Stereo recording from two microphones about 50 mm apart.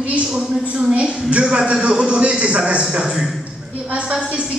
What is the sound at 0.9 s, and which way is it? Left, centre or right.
A man's voice, right.